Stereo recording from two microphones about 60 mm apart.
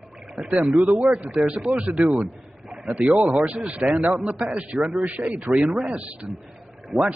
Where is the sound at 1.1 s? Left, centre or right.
Right.